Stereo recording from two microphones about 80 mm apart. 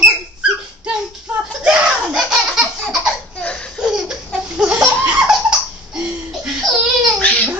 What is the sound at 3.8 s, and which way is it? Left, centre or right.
Laughter, centre.